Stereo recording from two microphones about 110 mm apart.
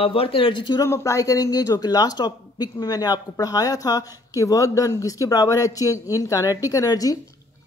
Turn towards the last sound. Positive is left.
turn(degrees=35)  # may be behind; listen again after turning